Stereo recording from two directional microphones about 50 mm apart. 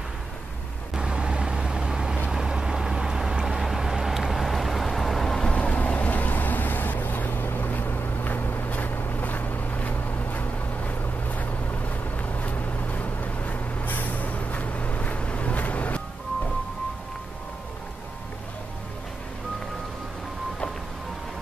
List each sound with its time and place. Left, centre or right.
0.9 s vehicle: centre
5.5 s vehicle: left